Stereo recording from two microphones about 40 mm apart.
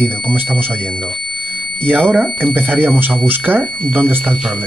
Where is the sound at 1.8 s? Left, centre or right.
Right.